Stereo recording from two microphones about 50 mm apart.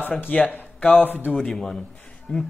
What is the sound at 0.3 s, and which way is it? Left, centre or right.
Speech, left.